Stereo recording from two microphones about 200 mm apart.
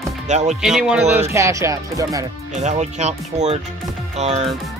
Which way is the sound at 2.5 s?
35° right (ahead or behind).